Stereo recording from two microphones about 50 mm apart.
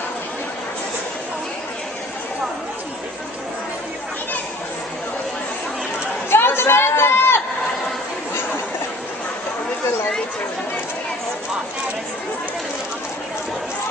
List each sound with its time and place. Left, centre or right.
6.3 s chatter: left